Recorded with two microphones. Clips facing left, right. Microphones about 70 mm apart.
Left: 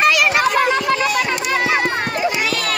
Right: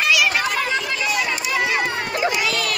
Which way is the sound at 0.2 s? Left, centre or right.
Left.